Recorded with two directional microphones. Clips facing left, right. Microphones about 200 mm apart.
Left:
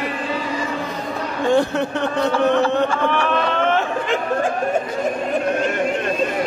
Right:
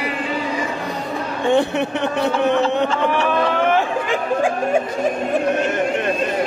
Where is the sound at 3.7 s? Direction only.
10° right (ahead or behind).